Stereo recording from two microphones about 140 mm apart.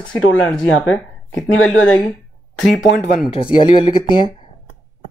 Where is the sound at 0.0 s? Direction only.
5° left (ahead or behind).